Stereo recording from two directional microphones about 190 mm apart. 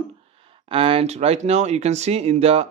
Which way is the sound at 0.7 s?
30° right (ahead or behind).